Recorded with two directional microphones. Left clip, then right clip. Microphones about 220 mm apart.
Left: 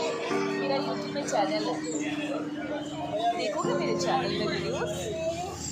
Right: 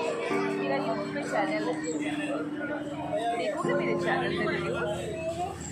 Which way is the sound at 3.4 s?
20° left (ahead or behind).